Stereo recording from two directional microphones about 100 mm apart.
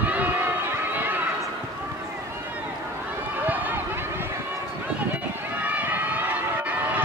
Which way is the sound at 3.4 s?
20° right (ahead or behind).